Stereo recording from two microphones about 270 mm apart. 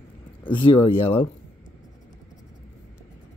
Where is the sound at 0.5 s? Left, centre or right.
Centre.